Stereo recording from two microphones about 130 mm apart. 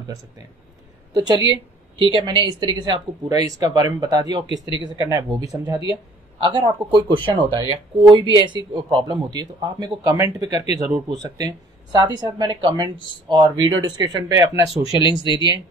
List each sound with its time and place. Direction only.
1.1 s a woman's voice: 30° right (ahead or behind)
15.0 s speech: 35° left (ahead or behind)